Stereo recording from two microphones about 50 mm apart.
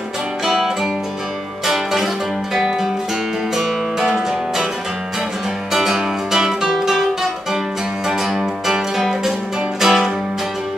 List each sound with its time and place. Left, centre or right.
0.5 s music: centre
5.7 s music: centre
8.1 s music: centre
9.8 s music: centre